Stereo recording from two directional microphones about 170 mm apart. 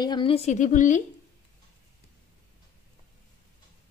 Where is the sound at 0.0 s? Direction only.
30° left (ahead or behind); by 1.0 s 50° left (ahead or behind).